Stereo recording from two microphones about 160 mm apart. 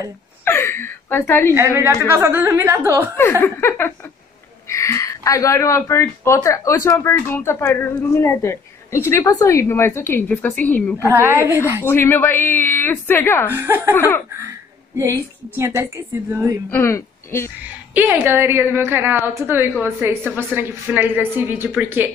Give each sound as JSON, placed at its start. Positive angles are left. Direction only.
{"t": 0.5, "sound": "speech", "side_deg": 15}
{"t": 1.5, "sound": "a woman's voice", "side_deg": -15}
{"t": 3.2, "sound": "speech", "side_deg": 15}
{"t": 11.1, "sound": "a woman's voice", "side_deg": -15}
{"t": 11.8, "sound": "speech", "side_deg": 15}
{"t": 13.5, "sound": "a woman's voice", "side_deg": -15}
{"t": 13.9, "sound": "speech", "side_deg": 15}
{"t": 15.0, "sound": "a woman's voice", "side_deg": -15}
{"t": 16.7, "sound": "speech", "side_deg": 15}
{"t": 17.9, "sound": "a woman's voice", "side_deg": -10}